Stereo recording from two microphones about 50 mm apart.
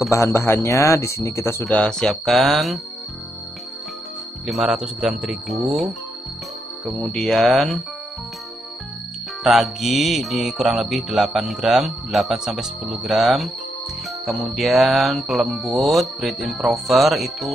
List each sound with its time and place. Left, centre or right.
0.1 s speech: left
0.4 s speech: left
0.7 s speech: left
1.7 s speech: centre
2.2 s music: centre
4.5 s music: centre
7.2 s speech: centre
9.4 s music: centre